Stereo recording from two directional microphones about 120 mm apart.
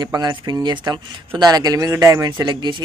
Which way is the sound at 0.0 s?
35° right (ahead or behind).